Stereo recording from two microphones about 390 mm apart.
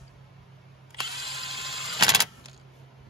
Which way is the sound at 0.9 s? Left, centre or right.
Centre.